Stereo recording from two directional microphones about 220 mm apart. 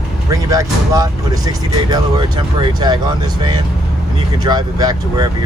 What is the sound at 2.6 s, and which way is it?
Speech, 20° right (ahead or behind).